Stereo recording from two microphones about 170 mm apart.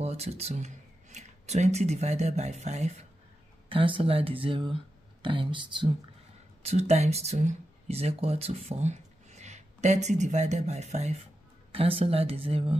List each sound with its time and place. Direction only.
0.0 s speech: 40° right (ahead or behind)
3.6 s speech: 30° right (ahead or behind)